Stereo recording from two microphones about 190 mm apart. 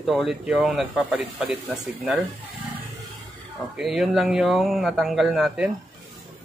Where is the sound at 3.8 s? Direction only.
Centre (ahead or behind).